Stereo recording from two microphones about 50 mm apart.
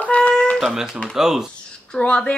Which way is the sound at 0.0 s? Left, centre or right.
Left.